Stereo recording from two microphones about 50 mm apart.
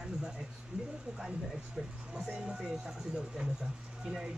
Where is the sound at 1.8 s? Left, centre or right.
Centre.